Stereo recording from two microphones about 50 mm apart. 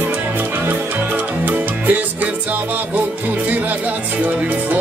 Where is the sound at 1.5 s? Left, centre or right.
Right.